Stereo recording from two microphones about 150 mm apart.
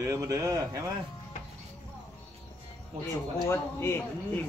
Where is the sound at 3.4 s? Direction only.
15° left (ahead or behind).